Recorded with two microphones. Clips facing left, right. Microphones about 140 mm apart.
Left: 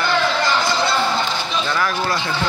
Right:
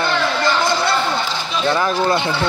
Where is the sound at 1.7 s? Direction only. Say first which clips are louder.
Right 5 dB; 25° right (ahead or behind).